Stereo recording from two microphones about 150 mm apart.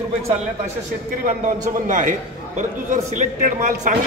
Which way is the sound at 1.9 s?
60° right (ahead or behind).